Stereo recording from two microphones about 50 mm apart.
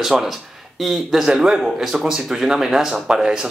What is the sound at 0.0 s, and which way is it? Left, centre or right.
Speech, centre.